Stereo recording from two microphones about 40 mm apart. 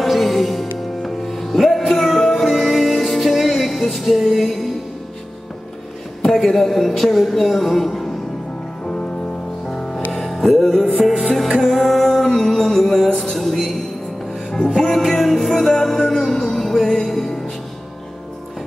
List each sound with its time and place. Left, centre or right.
0.0 s music: centre
6.2 s a woman's voice: centre
7.9 s music: centre
8.8 s music: left
9.7 s music: centre
15.0 s music: centre